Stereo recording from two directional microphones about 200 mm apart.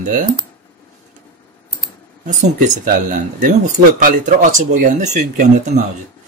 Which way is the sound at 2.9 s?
40° right (ahead or behind).